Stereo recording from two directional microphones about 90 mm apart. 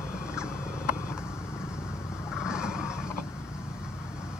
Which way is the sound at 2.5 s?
10° right (ahead or behind).